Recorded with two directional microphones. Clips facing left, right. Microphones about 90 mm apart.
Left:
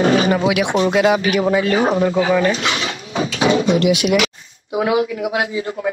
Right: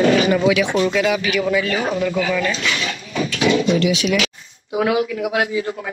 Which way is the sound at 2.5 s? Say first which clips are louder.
Left 3 dB; 50° left (ahead or behind).